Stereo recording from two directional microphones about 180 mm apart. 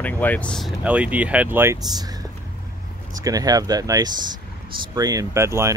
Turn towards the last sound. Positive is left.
turn(degrees=-15)  # may be behind; listen again after turning